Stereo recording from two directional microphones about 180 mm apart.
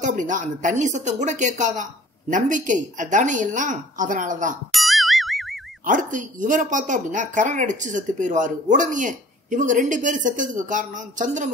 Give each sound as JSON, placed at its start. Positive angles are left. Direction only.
{"t": 0.0, "sound": "speech", "side_deg": -45}
{"t": 4.7, "sound": "boing", "side_deg": 0}
{"t": 5.9, "sound": "speech", "side_deg": -45}